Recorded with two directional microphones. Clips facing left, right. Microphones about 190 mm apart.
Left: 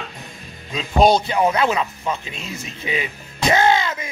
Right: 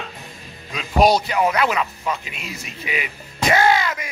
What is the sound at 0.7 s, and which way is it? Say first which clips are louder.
A man's voice: left 1 dB; 25° left (ahead or behind).